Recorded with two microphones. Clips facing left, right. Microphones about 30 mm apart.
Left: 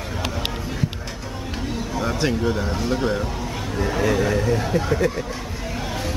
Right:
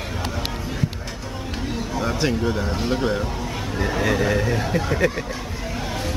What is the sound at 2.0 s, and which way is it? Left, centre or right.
Speech, centre.